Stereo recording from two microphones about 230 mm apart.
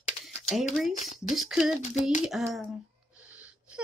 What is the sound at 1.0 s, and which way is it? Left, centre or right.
Speech, left.